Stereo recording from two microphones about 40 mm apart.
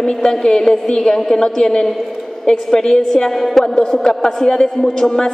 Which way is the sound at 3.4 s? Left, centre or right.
Centre.